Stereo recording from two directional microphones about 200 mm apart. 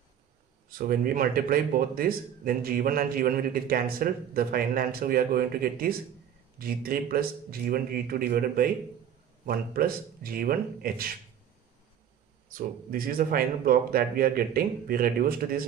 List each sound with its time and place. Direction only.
0.7 s a man's voice: 45° right (ahead or behind)
12.4 s a man's voice: 45° right (ahead or behind)